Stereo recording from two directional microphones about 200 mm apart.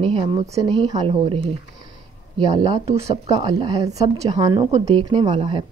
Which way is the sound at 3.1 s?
30° right (ahead or behind).